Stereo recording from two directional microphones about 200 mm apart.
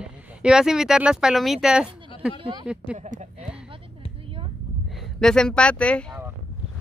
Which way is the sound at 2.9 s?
40° right (ahead or behind).